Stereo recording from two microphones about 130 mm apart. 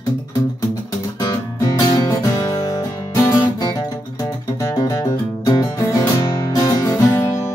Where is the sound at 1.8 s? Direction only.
30° left (ahead or behind).